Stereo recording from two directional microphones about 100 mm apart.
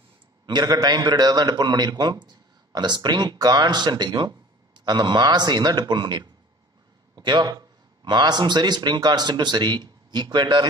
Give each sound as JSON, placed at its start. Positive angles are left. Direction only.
{"t": 0.5, "sound": "a man's voice", "side_deg": -45}